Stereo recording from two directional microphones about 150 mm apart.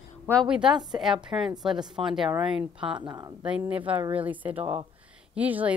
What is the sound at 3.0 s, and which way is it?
Speech, 30° right (ahead or behind).